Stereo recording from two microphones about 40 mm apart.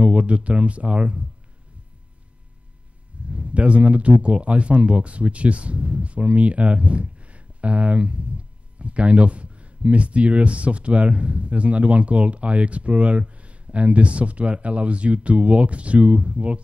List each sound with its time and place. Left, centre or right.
0.0 s speech: right
3.3 s speech: right